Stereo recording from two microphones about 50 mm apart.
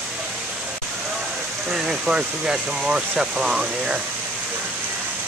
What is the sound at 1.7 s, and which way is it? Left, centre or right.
Speech, centre.